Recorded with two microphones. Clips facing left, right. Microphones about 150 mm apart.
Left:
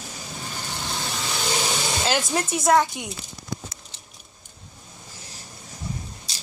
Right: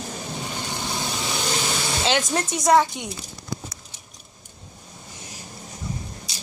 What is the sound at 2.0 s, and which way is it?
Speech, 5° left (ahead or behind).